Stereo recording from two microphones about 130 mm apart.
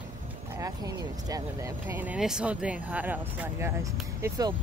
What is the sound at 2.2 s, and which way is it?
Speech, 5° right (ahead or behind).